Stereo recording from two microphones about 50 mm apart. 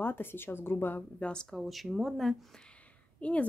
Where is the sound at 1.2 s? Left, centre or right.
Centre.